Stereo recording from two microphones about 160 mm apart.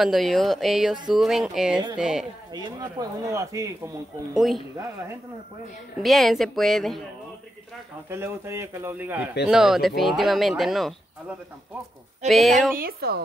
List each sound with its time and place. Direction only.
0.0 s speech: centre (ahead or behind)
2.5 s speech: 25° right (ahead or behind)
4.4 s speech: centre (ahead or behind)
6.0 s speech: centre (ahead or behind)
8.1 s speech: 15° right (ahead or behind); by 12.7 s centre (ahead or behind)
12.7 s speech: 70° right (ahead or behind)